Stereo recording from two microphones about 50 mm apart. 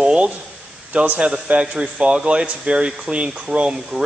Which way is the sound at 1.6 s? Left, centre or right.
Centre.